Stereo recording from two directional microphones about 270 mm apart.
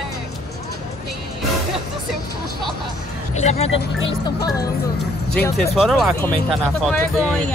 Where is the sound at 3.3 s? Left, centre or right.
Left.